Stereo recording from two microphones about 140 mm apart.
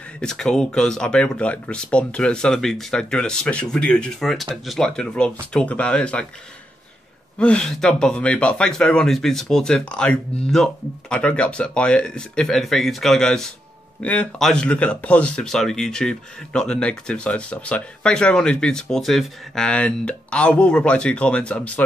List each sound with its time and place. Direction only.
0.2 s speech: 5° left (ahead or behind)
7.3 s speech: 5° left (ahead or behind)